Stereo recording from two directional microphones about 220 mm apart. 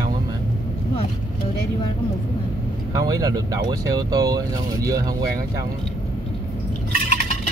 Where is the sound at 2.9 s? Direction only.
15° right (ahead or behind).